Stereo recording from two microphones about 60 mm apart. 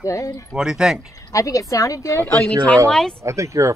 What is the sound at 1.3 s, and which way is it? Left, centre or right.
Speech, left.